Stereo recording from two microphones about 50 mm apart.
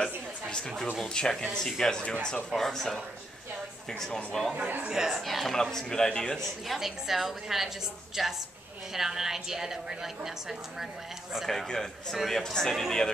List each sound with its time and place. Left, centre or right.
0.0 s a sound: centre
1.0 s speech: centre
4.0 s speech: centre
4.6 s a man's voice: right
4.8 s a woman's voice: centre
5.1 s speech: centre
6.7 s a woman's voice: centre
11.4 s a man's voice: centre